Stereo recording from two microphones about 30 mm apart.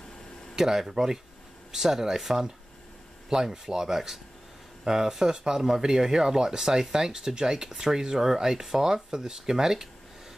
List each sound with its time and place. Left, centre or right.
0.6 s speech: centre